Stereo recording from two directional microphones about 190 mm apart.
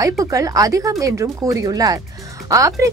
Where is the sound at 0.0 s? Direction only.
15° right (ahead or behind).